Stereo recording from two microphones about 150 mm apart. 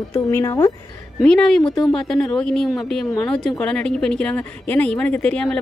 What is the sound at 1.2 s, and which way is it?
Speech, 5° left (ahead or behind).